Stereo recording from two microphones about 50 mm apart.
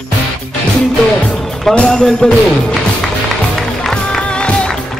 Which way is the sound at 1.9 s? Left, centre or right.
Centre.